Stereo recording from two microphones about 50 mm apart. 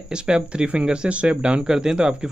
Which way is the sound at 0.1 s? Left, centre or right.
Centre.